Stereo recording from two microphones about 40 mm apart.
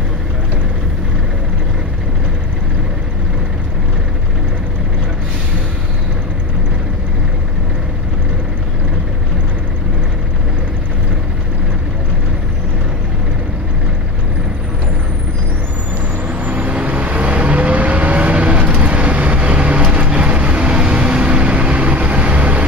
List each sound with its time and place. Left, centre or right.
16.3 s vehicle: right